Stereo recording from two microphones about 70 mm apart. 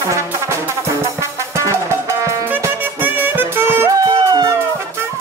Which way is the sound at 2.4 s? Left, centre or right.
Right.